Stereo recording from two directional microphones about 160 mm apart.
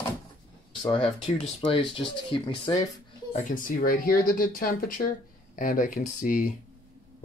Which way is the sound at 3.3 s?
55° left (ahead or behind).